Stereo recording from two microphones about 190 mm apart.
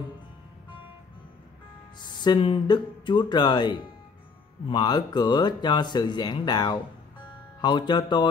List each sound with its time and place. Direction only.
2.0 s speech: 20° left (ahead or behind)